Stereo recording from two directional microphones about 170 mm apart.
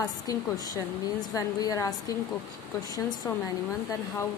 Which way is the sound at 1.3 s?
20° left (ahead or behind).